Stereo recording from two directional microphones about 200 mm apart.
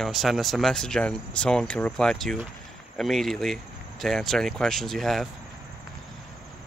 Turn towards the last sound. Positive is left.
turn(degrees=0)  # may be behind; listen again after turning